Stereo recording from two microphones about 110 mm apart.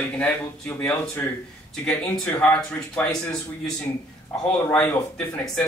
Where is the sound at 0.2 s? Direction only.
15° left (ahead or behind).